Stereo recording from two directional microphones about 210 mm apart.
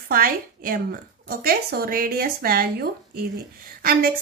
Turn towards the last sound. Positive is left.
turn(degrees=-45)  # may be behind; listen again after turning